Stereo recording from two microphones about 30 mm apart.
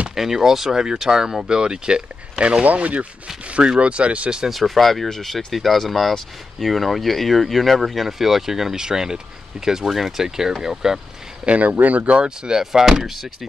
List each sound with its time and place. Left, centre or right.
0.1 s speech: centre
1.4 s speech: right
2.6 s speech: right
3.4 s zipper: right
3.8 s speech: right
4.5 s speech: centre
9.8 s speech: centre
11.4 s speech: right
12.4 s speech: right
13.0 s speech: centre